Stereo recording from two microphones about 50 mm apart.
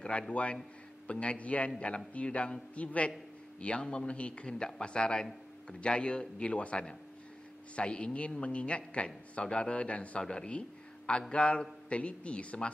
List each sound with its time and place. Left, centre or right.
0.3 s a man's voice: left